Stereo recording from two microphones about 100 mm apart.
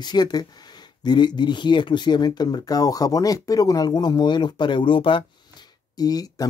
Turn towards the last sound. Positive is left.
turn(degrees=40)  # may be behind; listen again after turning